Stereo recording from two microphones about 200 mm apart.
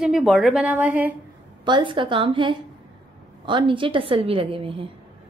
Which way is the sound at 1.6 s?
25° right (ahead or behind).